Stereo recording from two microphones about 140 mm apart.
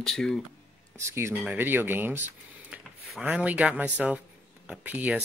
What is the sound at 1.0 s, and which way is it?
Speech, 20° right (ahead or behind).